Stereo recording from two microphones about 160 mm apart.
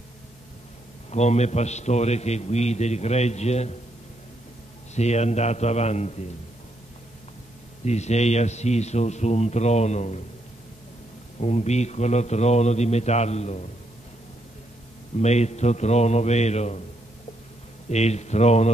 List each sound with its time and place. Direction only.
1.1 s a man's voice: 45° left (ahead or behind)
4.9 s a man's voice: 45° left (ahead or behind)
7.8 s a man's voice: 45° left (ahead or behind)
11.3 s a man's voice: 45° left (ahead or behind)
15.1 s a man's voice: 45° left (ahead or behind)
17.8 s a man's voice: 45° left (ahead or behind)